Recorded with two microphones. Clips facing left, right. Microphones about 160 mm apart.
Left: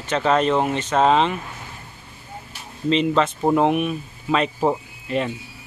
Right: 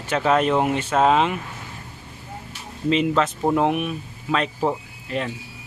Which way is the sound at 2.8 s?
5° right (ahead or behind).